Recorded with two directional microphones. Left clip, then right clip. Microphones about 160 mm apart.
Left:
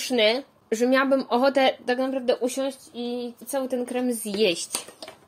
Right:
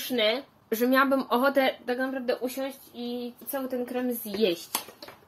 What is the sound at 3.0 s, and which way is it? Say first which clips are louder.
Speech: left 3 dB; 60° left (ahead or behind).